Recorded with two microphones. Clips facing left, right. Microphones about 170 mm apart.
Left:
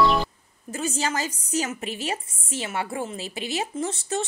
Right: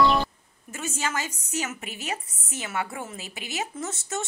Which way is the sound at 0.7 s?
35° left (ahead or behind).